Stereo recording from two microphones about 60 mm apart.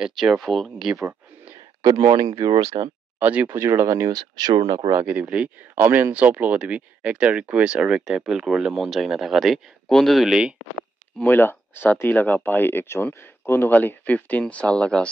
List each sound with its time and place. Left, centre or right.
0.0 s speech: centre
1.8 s speech: right
3.2 s speech: right
3.5 s speech: right
3.8 s speech: right
5.0 s speech: right
5.8 s speech: right; by 10.4 s centre
11.2 s speech: left
13.7 s speech: left